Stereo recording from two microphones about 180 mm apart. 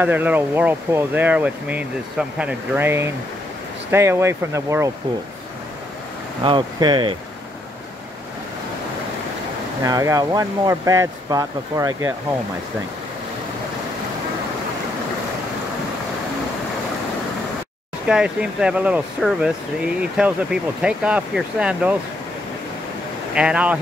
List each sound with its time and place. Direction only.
0.0 s speech: 10° right (ahead or behind)
6.4 s speech: 25° right (ahead or behind)
9.8 s speech: 20° right (ahead or behind)
18.0 s speech: 5° right (ahead or behind)
23.3 s speech: 5° right (ahead or behind)